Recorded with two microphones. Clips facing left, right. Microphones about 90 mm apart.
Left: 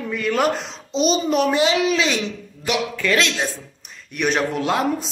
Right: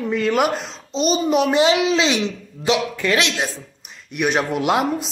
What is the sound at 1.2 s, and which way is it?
A man's voice, 15° right (ahead or behind).